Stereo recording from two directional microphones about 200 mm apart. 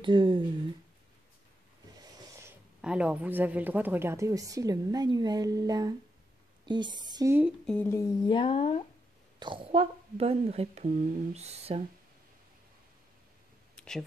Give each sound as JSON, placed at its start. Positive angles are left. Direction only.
{"t": 0.0, "sound": "speech", "side_deg": -25}
{"t": 2.0, "sound": "a sound", "side_deg": -15}
{"t": 2.8, "sound": "a woman's voice", "side_deg": -5}
{"t": 6.6, "sound": "a sound", "side_deg": -20}
{"t": 7.1, "sound": "a woman's voice", "side_deg": -15}
{"t": 7.6, "sound": "humming", "side_deg": 10}
{"t": 8.3, "sound": "speech", "side_deg": 25}
{"t": 9.4, "sound": "a woman's voice", "side_deg": -25}
{"t": 13.7, "sound": "a sound", "side_deg": 5}